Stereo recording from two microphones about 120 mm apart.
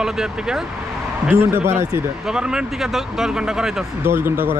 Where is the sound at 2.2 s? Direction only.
5° right (ahead or behind).